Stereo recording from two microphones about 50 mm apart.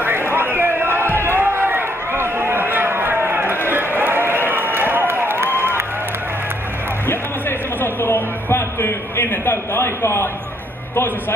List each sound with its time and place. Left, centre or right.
0.0 s a sound: right
1.2 s run: right
5.6 s applause: right
7.1 s music: left